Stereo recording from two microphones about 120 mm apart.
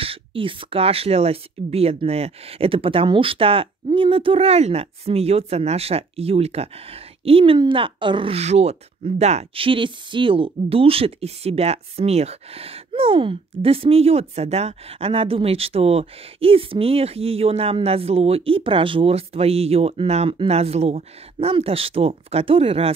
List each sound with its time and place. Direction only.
0.0 s speech: 50° right (ahead or behind)